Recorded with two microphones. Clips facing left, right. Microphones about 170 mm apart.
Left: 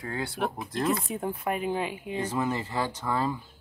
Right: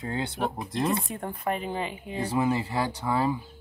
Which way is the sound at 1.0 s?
5° left (ahead or behind).